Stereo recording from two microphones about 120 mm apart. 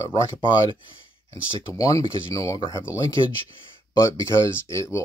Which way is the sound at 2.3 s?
30° left (ahead or behind).